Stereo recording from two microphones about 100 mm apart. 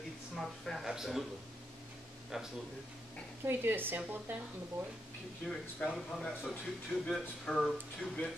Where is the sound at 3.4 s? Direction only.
20° right (ahead or behind).